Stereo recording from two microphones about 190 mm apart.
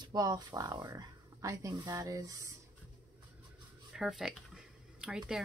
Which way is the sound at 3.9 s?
Centre (ahead or behind).